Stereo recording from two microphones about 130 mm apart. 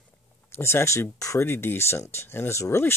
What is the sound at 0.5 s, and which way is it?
Speech, 20° left (ahead or behind).